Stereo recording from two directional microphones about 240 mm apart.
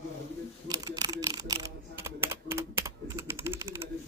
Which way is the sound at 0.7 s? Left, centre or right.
Centre.